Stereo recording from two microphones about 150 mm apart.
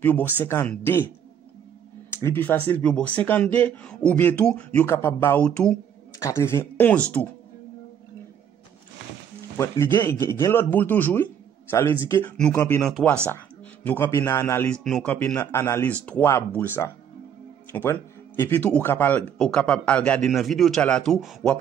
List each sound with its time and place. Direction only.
0.0 s speech: 10° left (ahead or behind)
9.6 s speech: 15° left (ahead or behind)
12.3 s speech: 5° left (ahead or behind)